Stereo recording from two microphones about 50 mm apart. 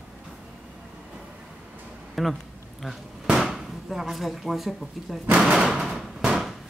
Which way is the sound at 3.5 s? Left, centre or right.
Centre.